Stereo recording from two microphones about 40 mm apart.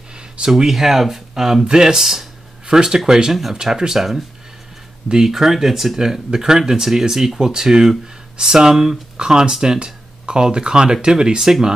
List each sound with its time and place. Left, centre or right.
0.5 s speech: centre